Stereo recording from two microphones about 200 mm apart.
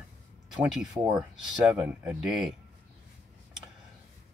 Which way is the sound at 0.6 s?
5° right (ahead or behind).